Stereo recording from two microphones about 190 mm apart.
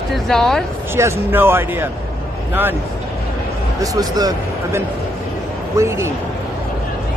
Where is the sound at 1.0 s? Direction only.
10° right (ahead or behind).